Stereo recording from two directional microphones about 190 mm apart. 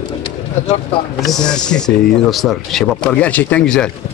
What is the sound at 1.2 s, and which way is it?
Speech, 5° left (ahead or behind).